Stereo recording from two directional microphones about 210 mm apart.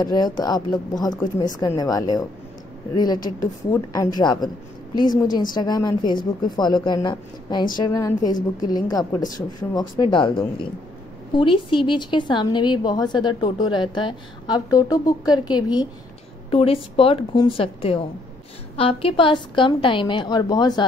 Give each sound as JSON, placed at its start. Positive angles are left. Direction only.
{"t": 0.0, "sound": "a woman's voice", "side_deg": 20}